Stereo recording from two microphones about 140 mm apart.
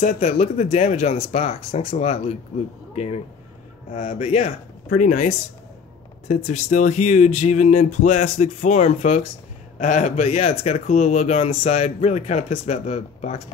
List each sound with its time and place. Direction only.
0.0 s speech: 55° left (ahead or behind)
3.9 s speech: 50° left (ahead or behind)
4.9 s speech: 65° left (ahead or behind)